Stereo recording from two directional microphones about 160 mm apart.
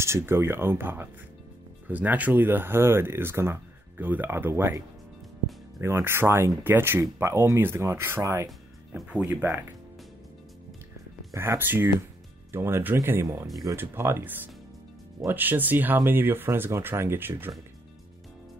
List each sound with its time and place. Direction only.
0.0 s speech: 15° right (ahead or behind)
8.5 s music: centre (ahead or behind)
9.2 s speech: 15° right (ahead or behind)
11.3 s speech: 15° right (ahead or behind)